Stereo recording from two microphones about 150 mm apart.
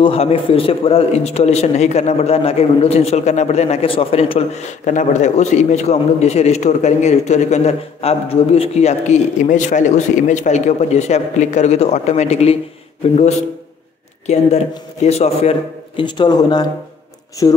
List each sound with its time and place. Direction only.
0.0 s a man's voice: 40° left (ahead or behind)
16.0 s speech: 30° left (ahead or behind)